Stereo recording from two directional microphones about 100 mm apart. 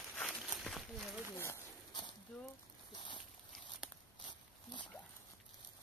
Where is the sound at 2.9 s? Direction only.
50° left (ahead or behind).